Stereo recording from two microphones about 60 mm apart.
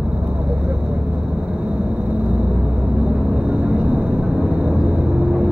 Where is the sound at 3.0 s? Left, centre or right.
Centre.